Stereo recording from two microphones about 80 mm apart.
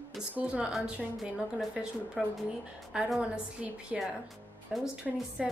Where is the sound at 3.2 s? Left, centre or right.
Centre.